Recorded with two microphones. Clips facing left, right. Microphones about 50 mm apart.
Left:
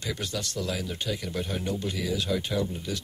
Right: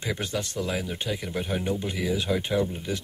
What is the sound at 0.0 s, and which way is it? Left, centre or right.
Speech, right.